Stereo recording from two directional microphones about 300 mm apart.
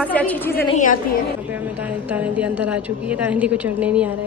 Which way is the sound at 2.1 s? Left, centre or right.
Centre.